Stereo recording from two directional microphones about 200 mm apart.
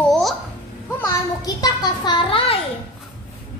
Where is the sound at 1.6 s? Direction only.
20° left (ahead or behind).